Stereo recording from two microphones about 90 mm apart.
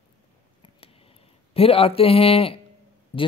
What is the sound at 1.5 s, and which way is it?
Speech, 90° left.